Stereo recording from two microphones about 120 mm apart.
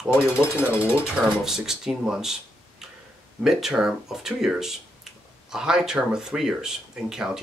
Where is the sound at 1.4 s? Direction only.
5° right (ahead or behind).